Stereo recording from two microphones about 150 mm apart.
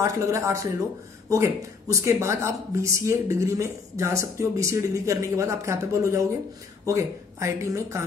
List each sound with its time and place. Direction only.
0.0 s speech: 20° right (ahead or behind)